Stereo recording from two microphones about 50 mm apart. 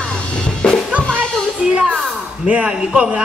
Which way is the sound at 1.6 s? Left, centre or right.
Centre.